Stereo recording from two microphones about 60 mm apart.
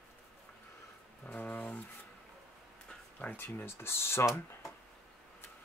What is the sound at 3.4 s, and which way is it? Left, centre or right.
Speech, left.